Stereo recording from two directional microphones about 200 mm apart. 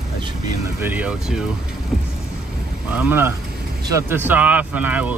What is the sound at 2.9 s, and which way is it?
Speech, 10° right (ahead or behind).